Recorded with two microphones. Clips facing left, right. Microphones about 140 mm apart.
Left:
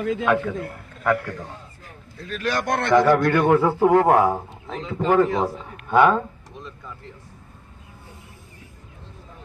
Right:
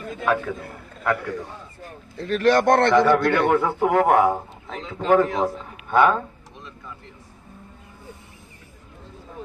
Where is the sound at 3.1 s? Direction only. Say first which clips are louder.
Left 1 dB; centre (ahead or behind).